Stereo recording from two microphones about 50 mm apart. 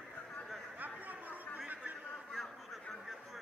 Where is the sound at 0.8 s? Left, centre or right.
Right.